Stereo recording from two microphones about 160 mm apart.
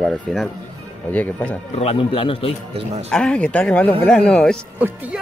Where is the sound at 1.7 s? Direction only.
35° left (ahead or behind).